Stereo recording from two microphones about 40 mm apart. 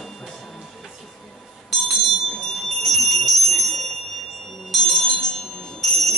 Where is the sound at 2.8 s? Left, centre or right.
Centre.